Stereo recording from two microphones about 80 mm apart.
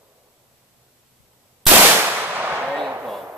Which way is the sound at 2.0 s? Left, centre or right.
Right.